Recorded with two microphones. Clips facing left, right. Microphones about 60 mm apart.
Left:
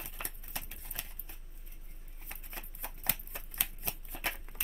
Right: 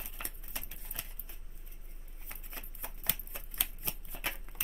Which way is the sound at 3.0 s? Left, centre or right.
Centre.